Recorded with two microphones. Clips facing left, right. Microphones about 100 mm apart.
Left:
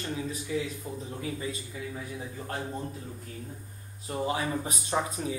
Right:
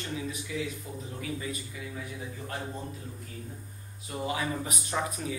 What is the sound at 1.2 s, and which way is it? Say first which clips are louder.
Speech: even; 30° left (ahead or behind).